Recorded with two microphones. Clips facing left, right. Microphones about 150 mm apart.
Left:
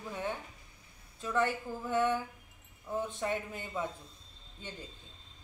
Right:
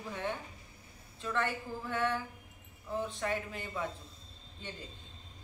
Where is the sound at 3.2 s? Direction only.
20° left (ahead or behind).